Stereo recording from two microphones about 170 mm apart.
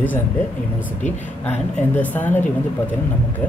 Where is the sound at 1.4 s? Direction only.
10° left (ahead or behind).